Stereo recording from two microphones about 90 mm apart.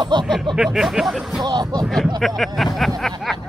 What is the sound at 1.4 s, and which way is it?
Speech, 50° right (ahead or behind).